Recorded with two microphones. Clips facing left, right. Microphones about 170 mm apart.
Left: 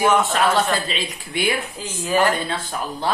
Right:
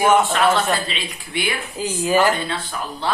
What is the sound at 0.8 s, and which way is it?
Speech, 45° left (ahead or behind).